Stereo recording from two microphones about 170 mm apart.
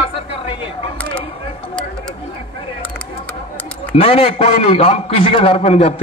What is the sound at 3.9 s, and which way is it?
A man's voice, 35° left (ahead or behind).